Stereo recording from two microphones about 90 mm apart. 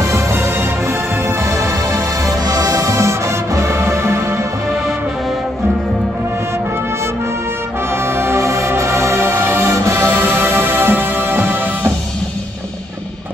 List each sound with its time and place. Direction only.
0.0 s music: 35° right (ahead or behind)
1.5 s music: 35° right (ahead or behind)
8.2 s music: 30° right (ahead or behind)